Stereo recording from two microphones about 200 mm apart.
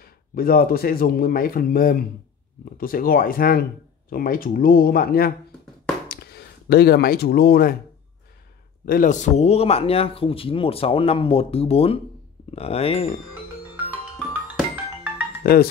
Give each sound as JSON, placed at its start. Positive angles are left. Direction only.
{"t": 0.0, "sound": "speech", "side_deg": 50}
{"t": 8.8, "sound": "speech", "side_deg": 45}
{"t": 15.4, "sound": "speech", "side_deg": 50}